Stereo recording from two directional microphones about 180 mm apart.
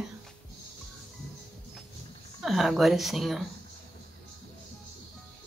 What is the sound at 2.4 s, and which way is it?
Speech, centre (ahead or behind).